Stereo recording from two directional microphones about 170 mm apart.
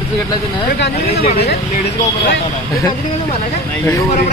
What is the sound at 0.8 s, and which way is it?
Speech, 65° left (ahead or behind).